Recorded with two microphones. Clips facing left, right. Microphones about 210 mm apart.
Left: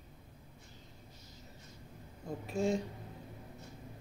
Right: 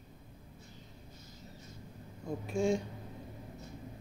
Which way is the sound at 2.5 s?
5° left (ahead or behind).